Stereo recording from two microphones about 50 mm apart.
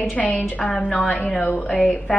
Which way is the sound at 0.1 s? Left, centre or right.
Left.